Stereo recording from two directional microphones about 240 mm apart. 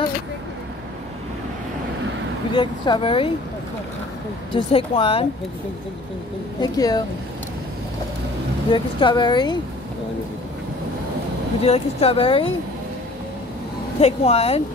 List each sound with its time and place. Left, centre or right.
2.5 s speech: centre
4.5 s speech: left
6.6 s speech: centre
8.7 s speech: centre
11.6 s speech: left
14.0 s speech: left